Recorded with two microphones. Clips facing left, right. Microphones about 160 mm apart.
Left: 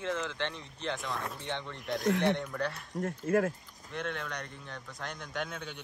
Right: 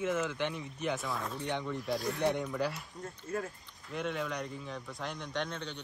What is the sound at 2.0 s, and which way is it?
Speech, 75° left (ahead or behind).